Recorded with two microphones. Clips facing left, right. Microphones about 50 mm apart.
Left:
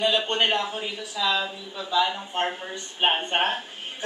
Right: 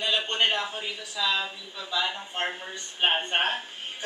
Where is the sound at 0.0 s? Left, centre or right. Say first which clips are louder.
Left 3 dB; centre.